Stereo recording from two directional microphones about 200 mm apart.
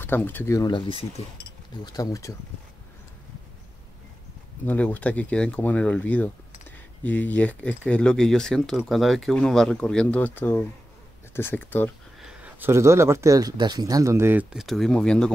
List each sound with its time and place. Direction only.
0.0 s speech: 10° left (ahead or behind)
4.6 s speech: 10° left (ahead or behind)
12.2 s speech: 5° right (ahead or behind)